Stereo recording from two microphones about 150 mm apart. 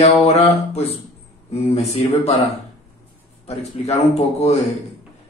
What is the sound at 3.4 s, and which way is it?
A man's voice, 45° left (ahead or behind).